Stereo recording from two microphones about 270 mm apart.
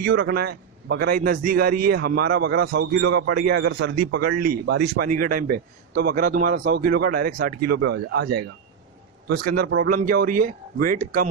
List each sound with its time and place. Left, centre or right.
0.0 s a man's voice: right